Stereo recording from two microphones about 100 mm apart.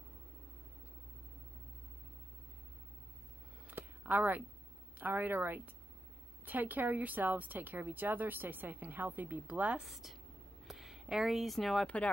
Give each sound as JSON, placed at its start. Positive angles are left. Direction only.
{"t": 3.6, "sound": "a sound", "side_deg": -15}
{"t": 4.9, "sound": "speech", "side_deg": -20}
{"t": 9.8, "sound": "speech", "side_deg": 0}